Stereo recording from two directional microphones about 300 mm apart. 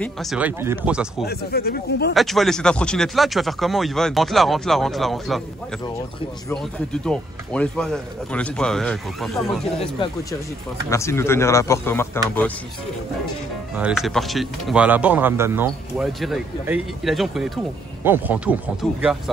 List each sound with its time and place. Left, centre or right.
0.0 s speech: centre
1.2 s speech: left
2.1 s speech: centre
6.5 s speech: centre
10.9 s speech: centre
13.7 s speech: centre